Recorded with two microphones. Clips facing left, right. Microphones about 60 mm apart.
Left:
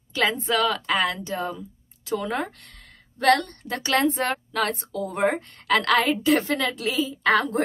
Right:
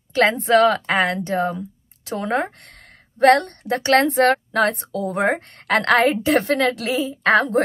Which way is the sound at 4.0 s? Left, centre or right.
Right.